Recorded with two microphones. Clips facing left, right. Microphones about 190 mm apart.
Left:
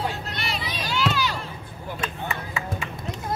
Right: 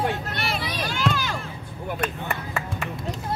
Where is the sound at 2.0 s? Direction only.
60° right (ahead or behind).